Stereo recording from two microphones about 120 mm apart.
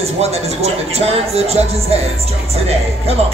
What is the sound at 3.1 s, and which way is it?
Speech, 60° right (ahead or behind).